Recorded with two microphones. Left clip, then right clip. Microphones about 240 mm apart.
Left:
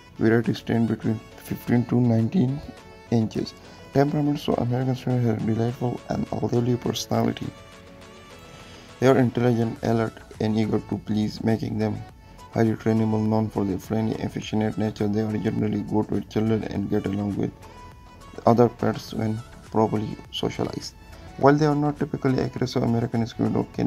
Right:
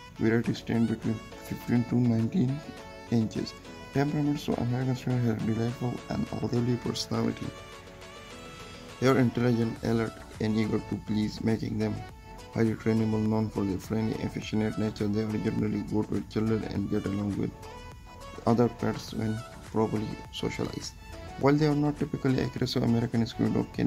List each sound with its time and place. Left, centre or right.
0.2 s speech: centre
0.8 s speech: centre
1.5 s speech: centre
5.8 s speech: centre
6.4 s speech: centre
9.0 s speech: centre